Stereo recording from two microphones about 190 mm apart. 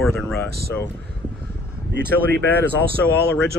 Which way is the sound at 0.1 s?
5° left (ahead or behind).